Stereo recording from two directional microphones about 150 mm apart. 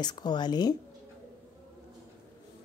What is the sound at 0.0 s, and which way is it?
Speech, 30° left (ahead or behind).